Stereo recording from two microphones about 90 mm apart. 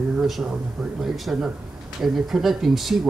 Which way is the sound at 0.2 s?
5° right (ahead or behind).